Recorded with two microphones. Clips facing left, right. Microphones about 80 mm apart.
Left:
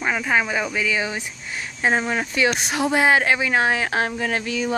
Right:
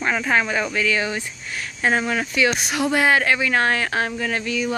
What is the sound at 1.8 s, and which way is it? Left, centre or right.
Speech, left.